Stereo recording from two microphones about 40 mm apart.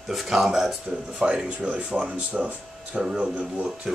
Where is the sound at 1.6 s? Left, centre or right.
Right.